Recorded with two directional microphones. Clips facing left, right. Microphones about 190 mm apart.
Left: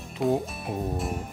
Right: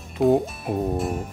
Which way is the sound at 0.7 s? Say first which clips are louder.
Right 6 dB; 55° right (ahead or behind).